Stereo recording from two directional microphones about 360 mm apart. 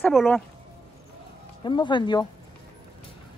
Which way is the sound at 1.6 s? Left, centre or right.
Centre.